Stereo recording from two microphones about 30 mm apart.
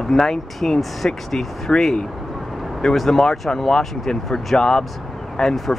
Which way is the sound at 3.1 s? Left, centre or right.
Centre.